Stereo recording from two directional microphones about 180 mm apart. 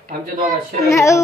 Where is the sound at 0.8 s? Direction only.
15° left (ahead or behind).